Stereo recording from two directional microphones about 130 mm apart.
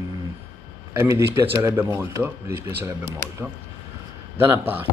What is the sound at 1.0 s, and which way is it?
A man's voice, 15° right (ahead or behind).